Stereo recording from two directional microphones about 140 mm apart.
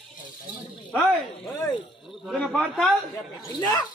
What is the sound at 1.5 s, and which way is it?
Speech, 25° left (ahead or behind).